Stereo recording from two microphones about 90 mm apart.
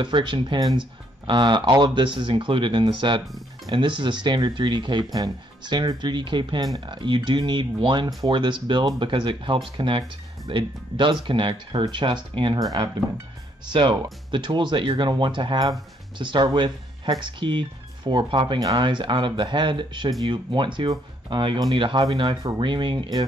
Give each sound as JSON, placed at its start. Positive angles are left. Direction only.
{"t": 0.0, "sound": "speech", "side_deg": -60}
{"t": 13.7, "sound": "speech", "side_deg": -65}
{"t": 22.1, "sound": "speech", "side_deg": -50}
{"t": 22.6, "sound": "speech", "side_deg": -60}